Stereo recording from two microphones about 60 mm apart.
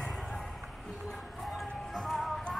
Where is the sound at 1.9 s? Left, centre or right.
Centre.